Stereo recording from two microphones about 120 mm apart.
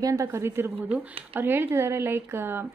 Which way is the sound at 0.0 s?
25° right (ahead or behind).